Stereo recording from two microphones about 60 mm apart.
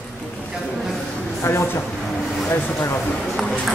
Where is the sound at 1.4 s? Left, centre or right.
Left.